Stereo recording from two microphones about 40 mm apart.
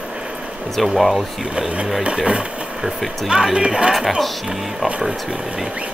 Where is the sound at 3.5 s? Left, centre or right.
Right.